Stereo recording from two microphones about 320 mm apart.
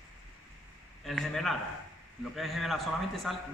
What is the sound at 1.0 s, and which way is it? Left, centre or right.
A man's voice, centre.